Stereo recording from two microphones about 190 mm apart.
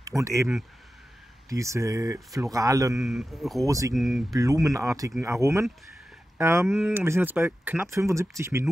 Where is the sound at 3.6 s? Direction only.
15° right (ahead or behind).